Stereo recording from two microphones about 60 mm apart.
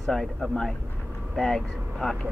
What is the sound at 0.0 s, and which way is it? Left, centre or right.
Speech, centre.